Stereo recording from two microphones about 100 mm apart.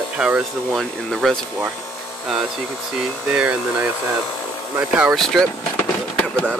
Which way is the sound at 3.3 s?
10° right (ahead or behind).